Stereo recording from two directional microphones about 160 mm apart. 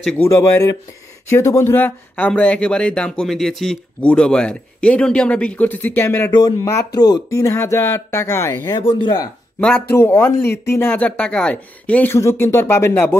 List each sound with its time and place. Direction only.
0.0 s speech: 15° left (ahead or behind)
6.9 s speech: 25° left (ahead or behind)
9.0 s speech: 25° left (ahead or behind)
9.6 s speech: 10° left (ahead or behind)